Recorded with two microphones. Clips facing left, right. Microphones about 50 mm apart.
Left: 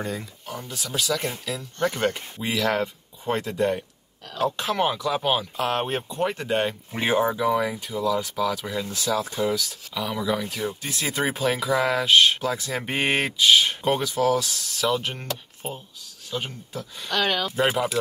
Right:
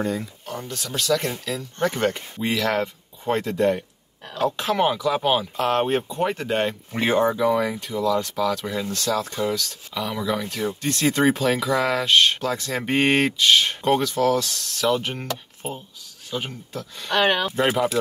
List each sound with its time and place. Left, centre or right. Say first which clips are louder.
0.0 s speech: right 5 dB; centre
17.1 s speech: right 4 dB; right
17.6 s speech: right 1 dB; centre